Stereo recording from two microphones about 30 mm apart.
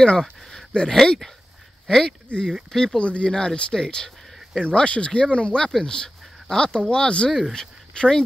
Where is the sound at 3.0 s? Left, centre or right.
Left.